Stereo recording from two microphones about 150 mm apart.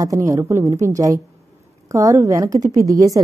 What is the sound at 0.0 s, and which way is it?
A woman's voice, 20° right (ahead or behind).